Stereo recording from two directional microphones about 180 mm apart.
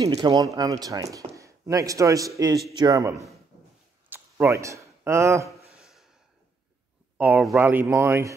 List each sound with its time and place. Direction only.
0.0 s speech: 20° right (ahead or behind)
4.1 s a sound: 15° right (ahead or behind)
7.2 s speech: 5° right (ahead or behind)